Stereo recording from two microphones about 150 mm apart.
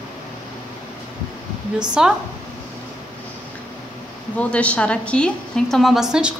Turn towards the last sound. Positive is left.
turn(degrees=-5)  # may be behind; listen again after turning